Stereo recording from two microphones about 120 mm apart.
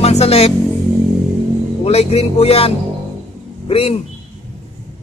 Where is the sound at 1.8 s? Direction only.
60° left (ahead or behind).